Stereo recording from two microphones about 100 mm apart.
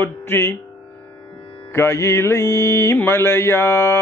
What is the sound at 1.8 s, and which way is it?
Music, 25° left (ahead or behind).